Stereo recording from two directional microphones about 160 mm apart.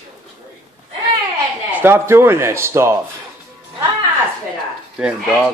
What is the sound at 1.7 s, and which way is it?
Speech, 10° right (ahead or behind).